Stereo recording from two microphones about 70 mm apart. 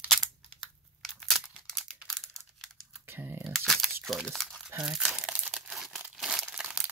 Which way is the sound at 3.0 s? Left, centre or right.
Right.